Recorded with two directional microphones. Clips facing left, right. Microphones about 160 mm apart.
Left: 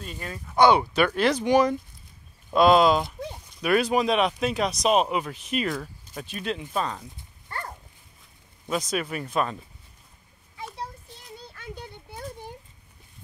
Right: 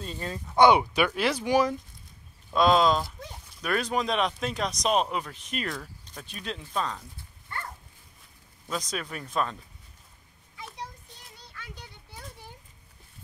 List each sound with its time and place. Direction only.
0.2 s speech: 20° right (ahead or behind); by 7.2 s 10° left (ahead or behind)
7.4 s dog: 40° left (ahead or behind)
8.6 s speech: 10° left (ahead or behind)